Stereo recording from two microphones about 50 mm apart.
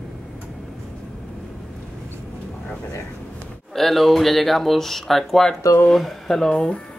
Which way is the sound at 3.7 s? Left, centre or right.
Centre.